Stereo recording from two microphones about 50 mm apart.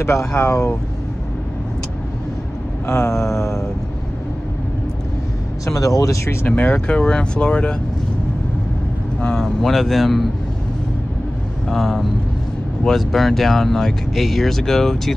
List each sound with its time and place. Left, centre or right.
0.4 s mantra: left
2.9 s mantra: left
3.3 s speech: left
5.7 s speech: left
6.4 s speech: left
6.9 s speech: centre
9.2 s speech: centre
9.6 s speech: centre
11.7 s speech: centre